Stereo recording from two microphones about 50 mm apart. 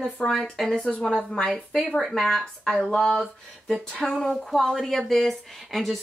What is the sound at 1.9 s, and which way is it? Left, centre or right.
Speech, centre.